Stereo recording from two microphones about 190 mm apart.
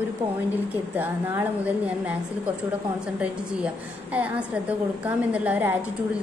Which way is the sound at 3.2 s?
5° right (ahead or behind).